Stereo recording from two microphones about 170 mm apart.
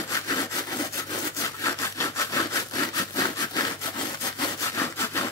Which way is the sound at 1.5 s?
15° left (ahead or behind).